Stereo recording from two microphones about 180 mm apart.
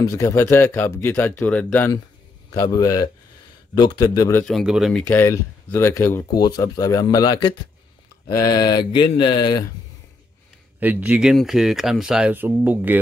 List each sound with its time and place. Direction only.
0.0 s speech: 20° left (ahead or behind)
4.5 s speech: centre (ahead or behind)
5.0 s speech: 15° left (ahead or behind)
10.8 s speech: 10° right (ahead or behind)